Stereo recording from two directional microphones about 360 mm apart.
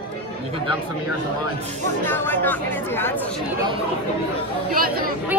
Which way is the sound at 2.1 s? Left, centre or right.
Centre.